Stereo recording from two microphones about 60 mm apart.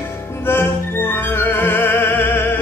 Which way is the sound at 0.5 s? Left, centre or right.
Left.